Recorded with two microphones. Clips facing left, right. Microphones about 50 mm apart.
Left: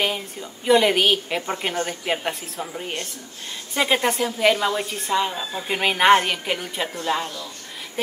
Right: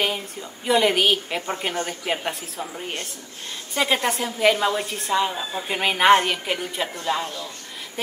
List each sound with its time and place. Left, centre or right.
0.0 s a woman's voice: centre